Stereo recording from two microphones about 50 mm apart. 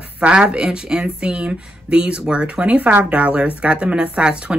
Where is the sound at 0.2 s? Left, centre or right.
Centre.